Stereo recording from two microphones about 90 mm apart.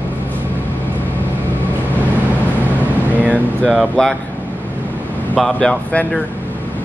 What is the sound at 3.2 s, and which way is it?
Air conditioning, 15° left (ahead or behind).